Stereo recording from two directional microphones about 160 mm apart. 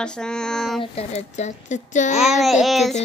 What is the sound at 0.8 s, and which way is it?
A woman's voice, 40° left (ahead or behind).